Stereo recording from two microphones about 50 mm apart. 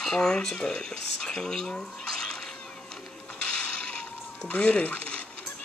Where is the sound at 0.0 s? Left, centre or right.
Centre.